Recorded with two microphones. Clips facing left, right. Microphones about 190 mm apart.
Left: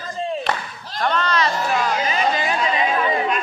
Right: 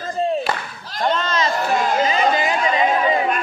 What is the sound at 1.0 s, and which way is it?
Speech, 25° right (ahead or behind).